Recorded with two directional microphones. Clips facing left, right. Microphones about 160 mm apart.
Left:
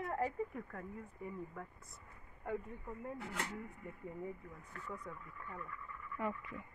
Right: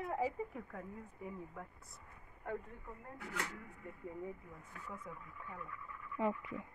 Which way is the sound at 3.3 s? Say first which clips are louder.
Right 4 dB; 25° left (ahead or behind).